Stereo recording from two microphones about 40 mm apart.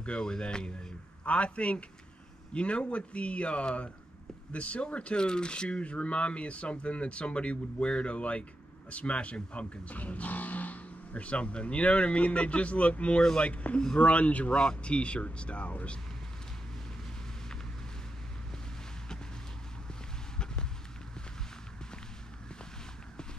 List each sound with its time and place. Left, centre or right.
0.0 s a man's voice: left